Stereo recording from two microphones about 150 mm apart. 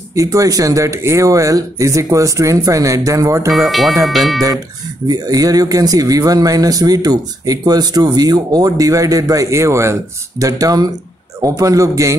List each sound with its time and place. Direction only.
0.1 s speech: 20° right (ahead or behind)
3.5 s speech: centre (ahead or behind)
5.0 s speech: 25° right (ahead or behind)